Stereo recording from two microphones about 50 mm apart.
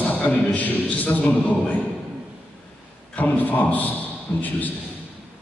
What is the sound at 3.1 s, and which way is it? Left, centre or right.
A man's voice, left.